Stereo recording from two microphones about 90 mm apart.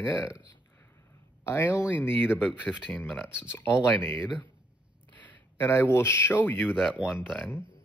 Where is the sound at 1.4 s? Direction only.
30° left (ahead or behind).